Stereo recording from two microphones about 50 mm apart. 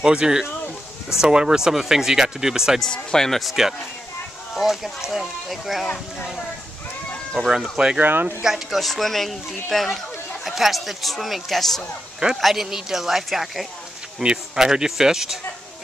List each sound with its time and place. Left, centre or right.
0.0 s speech: centre
2.9 s speech: centre
7.4 s speech: centre
7.7 s speech: centre
8.0 s speech: right
8.4 s speech: centre